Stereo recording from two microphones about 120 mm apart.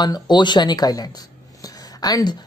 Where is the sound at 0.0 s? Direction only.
35° left (ahead or behind).